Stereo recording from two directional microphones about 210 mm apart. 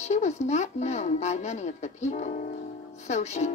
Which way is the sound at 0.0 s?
35° left (ahead or behind).